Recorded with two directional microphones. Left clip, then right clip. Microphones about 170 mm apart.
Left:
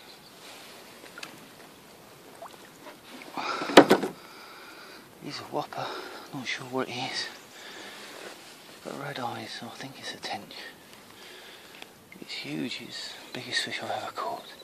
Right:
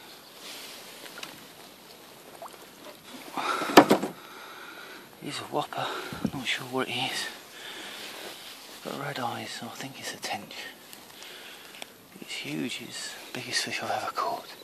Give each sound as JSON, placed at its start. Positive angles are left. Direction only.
{"t": 3.3, "sound": "a sound", "side_deg": -15}
{"t": 5.2, "sound": "speech", "side_deg": -15}
{"t": 8.8, "sound": "speech", "side_deg": -20}
{"t": 12.3, "sound": "speech", "side_deg": -5}